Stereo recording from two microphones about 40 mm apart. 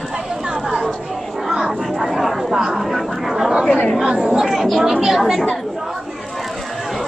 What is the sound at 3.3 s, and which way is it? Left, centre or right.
Chatter, centre.